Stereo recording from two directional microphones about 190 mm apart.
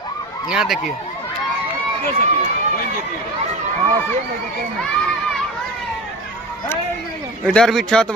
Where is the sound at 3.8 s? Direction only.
35° right (ahead or behind).